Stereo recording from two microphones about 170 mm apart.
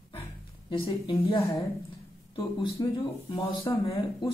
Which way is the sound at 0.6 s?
30° left (ahead or behind).